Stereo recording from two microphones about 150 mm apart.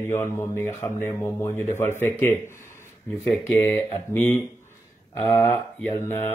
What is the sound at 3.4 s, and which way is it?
Speech, 15° left (ahead or behind).